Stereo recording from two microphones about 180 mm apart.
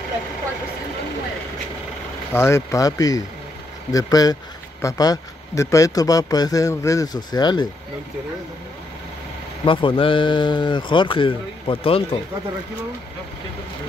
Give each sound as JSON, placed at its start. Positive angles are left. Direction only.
{"t": 2.3, "sound": "speech", "side_deg": 15}
{"t": 9.7, "sound": "speech", "side_deg": 30}